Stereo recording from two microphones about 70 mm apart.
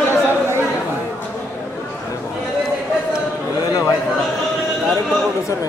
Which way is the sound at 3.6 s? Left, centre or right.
Left.